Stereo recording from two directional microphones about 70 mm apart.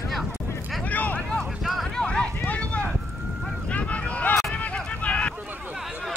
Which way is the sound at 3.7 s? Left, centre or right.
Centre.